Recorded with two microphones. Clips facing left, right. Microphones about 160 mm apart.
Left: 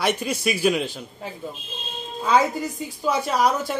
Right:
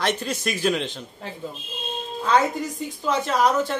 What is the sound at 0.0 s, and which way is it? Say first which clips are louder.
Speech: left 2 dB; 10° left (ahead or behind).